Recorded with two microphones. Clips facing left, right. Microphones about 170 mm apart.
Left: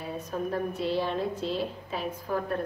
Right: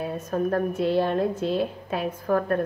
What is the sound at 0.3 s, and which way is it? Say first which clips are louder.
A woman's voice: right 6 dB; 50° right (ahead or behind).